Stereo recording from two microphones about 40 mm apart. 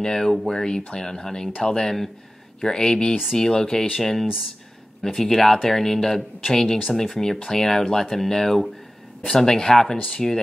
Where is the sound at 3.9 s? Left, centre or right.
Centre.